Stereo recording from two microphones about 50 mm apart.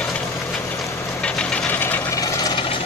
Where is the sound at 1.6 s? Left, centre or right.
Left.